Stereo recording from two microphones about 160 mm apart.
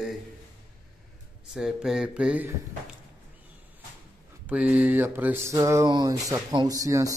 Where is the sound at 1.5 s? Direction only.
5° right (ahead or behind).